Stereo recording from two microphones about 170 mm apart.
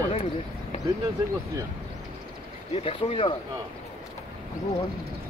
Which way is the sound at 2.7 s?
35° left (ahead or behind).